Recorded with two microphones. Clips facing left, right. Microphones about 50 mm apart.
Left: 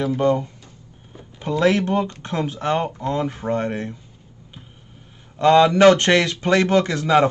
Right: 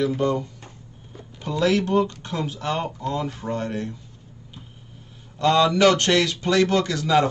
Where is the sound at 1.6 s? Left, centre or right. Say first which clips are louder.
Left 1 dB; left.